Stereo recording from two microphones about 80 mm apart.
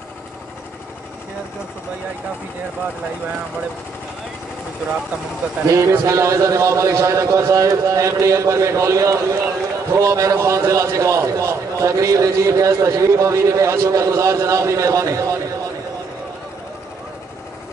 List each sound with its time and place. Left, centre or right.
5.7 s a man's voice: right